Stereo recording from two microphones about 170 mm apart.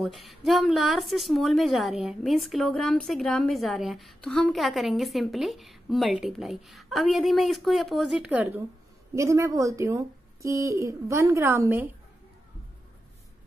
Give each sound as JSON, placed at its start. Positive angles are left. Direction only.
{"t": 0.0, "sound": "a woman's voice", "side_deg": 0}